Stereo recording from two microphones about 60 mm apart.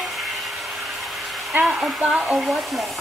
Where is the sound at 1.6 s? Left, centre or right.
Centre.